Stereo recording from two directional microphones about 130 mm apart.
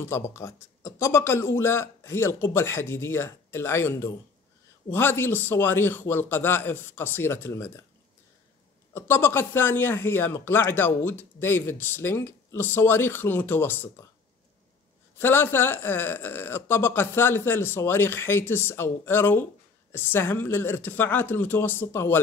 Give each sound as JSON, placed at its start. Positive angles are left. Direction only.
{"t": 0.0, "sound": "speech", "side_deg": 20}
{"t": 8.9, "sound": "speech", "side_deg": 20}
{"t": 15.1, "sound": "speech", "side_deg": 15}